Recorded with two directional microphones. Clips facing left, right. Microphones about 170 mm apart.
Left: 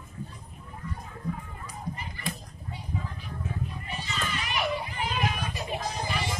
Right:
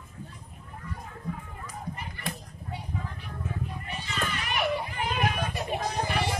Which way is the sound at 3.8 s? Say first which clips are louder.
Right 2 dB; 55° right (ahead or behind).